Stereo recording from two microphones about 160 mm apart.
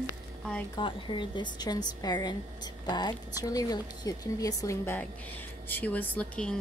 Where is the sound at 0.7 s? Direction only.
30° left (ahead or behind).